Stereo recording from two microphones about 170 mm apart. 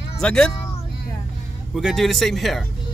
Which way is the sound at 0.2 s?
5° left (ahead or behind).